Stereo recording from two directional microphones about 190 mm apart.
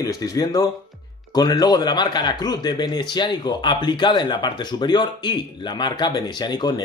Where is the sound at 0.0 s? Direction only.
20° left (ahead or behind).